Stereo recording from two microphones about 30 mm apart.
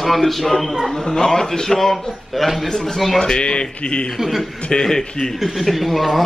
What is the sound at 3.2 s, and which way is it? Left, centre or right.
Speech, left.